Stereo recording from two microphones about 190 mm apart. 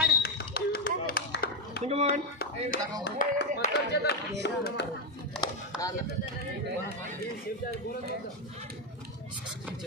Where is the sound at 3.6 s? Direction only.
40° left (ahead or behind).